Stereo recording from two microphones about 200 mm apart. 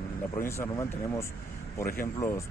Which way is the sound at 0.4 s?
15° left (ahead or behind).